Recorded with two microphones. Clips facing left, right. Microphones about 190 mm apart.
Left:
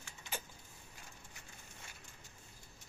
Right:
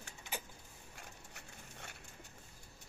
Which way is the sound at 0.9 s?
70° right (ahead or behind).